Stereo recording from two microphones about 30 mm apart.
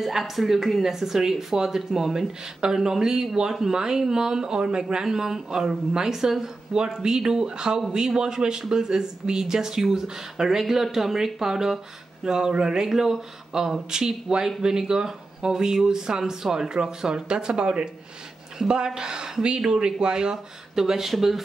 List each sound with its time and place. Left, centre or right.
0.2 s speech: centre; by 4.8 s right
5.0 s speech: centre
7.0 s speech: right
18.9 s speech: right
20.8 s speech: centre